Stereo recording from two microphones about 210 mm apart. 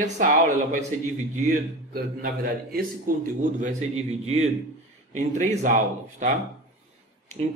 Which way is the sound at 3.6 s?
30° right (ahead or behind).